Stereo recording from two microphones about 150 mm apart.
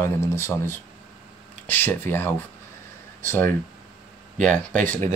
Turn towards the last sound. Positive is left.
turn(degrees=10)  # may be behind; listen again after turning